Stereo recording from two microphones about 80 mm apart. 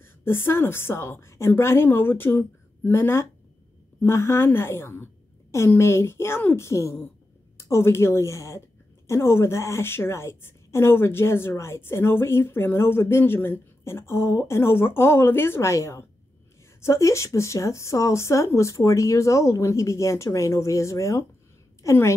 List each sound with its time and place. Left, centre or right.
0.0 s a woman's voice: left